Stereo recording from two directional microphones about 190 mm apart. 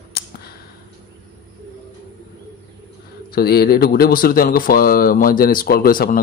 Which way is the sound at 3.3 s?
55° left (ahead or behind).